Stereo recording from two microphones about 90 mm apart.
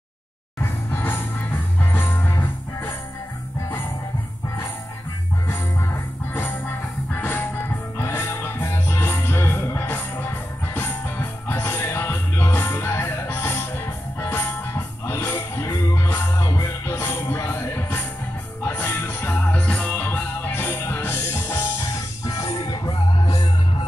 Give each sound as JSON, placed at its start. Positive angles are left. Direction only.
{"t": 0.6, "sound": "music", "side_deg": 25}
{"t": 7.1, "sound": "music", "side_deg": 25}
{"t": 16.6, "sound": "music", "side_deg": 25}
{"t": 22.2, "sound": "music", "side_deg": 40}